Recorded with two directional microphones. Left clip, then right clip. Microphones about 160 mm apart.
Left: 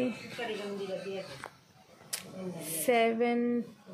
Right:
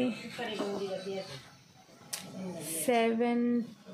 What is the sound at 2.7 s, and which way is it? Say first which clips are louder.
Speech: left 1 dB; centre (ahead or behind).